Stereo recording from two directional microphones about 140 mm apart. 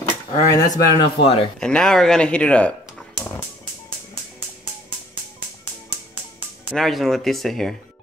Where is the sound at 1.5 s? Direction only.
5° left (ahead or behind).